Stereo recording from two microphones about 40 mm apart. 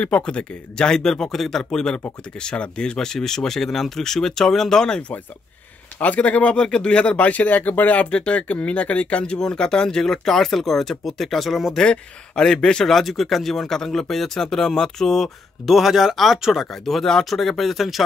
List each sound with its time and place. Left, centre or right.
0.0 s speech: left
5.9 s speech: left
7.4 s speech: left; by 11.8 s centre
12.4 s speech: centre
12.8 s speech: centre
15.7 s speech: centre
16.8 s speech: centre